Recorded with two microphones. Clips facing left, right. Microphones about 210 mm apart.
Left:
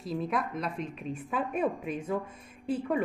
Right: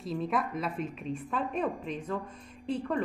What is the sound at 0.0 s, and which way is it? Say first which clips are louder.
A woman's voice: even; centre (ahead or behind).